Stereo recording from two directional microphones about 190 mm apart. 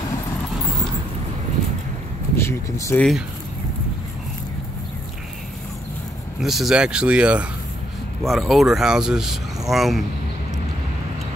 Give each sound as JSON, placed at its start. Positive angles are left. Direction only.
{"t": 2.3, "sound": "speech", "side_deg": 15}
{"t": 6.4, "sound": "speech", "side_deg": 0}